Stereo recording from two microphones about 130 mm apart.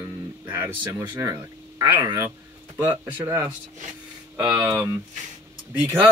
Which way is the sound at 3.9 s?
5° right (ahead or behind).